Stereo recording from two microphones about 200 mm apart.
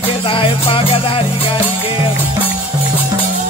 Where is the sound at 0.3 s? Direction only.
25° left (ahead or behind).